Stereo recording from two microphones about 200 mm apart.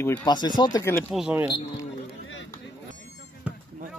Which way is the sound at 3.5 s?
5° right (ahead or behind).